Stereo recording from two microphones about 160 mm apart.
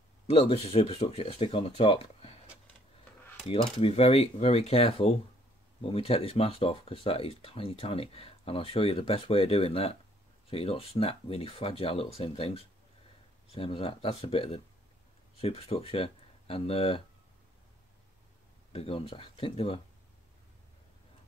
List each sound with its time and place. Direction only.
0.3 s speech: 35° left (ahead or behind)
3.4 s speech: 40° left (ahead or behind)
18.7 s speech: 35° left (ahead or behind)